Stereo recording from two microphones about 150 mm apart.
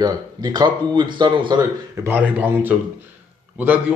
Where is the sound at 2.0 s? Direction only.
10° right (ahead or behind).